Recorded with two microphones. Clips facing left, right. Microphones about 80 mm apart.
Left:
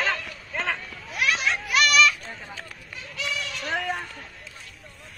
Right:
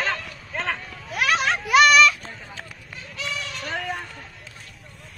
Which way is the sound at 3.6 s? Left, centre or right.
Centre.